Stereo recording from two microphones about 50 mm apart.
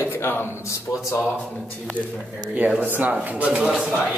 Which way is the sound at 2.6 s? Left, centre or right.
Right.